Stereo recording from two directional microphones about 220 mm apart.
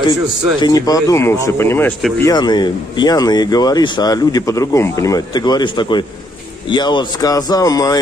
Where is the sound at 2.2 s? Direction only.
20° left (ahead or behind).